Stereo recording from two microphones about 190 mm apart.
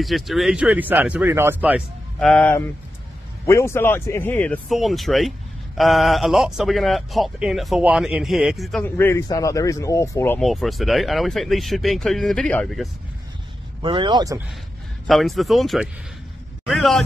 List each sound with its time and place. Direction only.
0.0 s speech: centre (ahead or behind)
2.1 s a man's voice: 5° left (ahead or behind)
4.6 s a man's voice: centre (ahead or behind)
8.8 s speech: 10° left (ahead or behind)
10.4 s a man's voice: centre (ahead or behind)
13.8 s speech: 25° right (ahead or behind)
15.0 s a man's voice: centre (ahead or behind)